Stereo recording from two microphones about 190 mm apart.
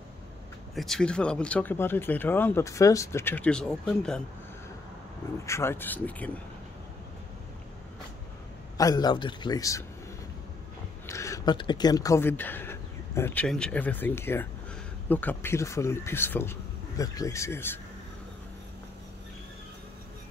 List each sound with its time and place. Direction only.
0.7 s speech: centre (ahead or behind)
5.5 s speech: 15° left (ahead or behind)
8.7 s a man's voice: 20° left (ahead or behind)
11.1 s speech: 15° left (ahead or behind)